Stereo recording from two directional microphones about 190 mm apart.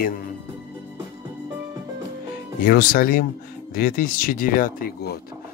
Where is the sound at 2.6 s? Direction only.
50° left (ahead or behind).